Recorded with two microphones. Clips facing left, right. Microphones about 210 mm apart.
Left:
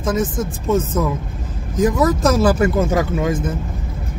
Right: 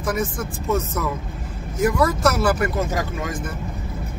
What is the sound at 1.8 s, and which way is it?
Speech, 20° left (ahead or behind).